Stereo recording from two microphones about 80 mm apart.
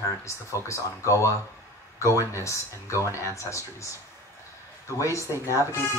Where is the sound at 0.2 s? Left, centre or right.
Left.